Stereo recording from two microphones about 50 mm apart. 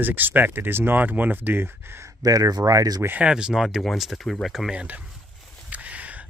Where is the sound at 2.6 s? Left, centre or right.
Right.